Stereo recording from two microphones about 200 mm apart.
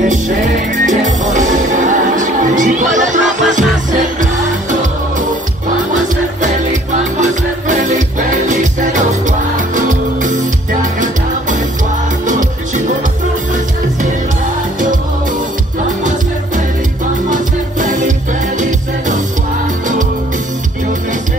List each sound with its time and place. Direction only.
0.7 s music: 40° right (ahead or behind)
6.4 s music: 40° right (ahead or behind)
16.0 s music: 40° right (ahead or behind)